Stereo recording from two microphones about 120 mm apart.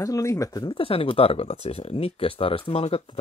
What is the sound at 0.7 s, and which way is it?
Speech, 50° left (ahead or behind).